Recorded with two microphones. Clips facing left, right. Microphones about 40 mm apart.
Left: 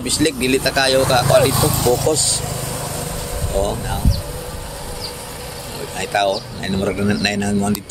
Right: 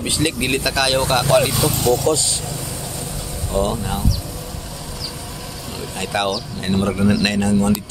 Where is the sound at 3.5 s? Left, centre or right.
Centre.